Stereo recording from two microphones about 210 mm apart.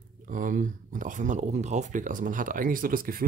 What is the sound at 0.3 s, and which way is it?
Speech, 40° right (ahead or behind).